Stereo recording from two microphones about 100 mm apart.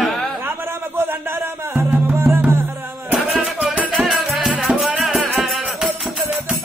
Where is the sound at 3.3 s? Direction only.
5° right (ahead or behind).